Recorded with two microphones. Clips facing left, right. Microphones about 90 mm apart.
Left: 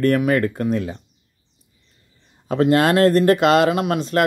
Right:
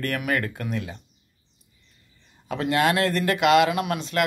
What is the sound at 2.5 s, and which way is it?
Speech, 40° left (ahead or behind).